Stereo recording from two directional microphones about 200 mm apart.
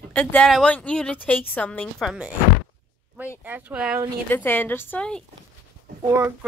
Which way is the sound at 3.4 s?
10° right (ahead or behind).